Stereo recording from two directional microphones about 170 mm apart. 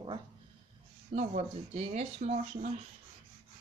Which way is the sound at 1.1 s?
40° right (ahead or behind).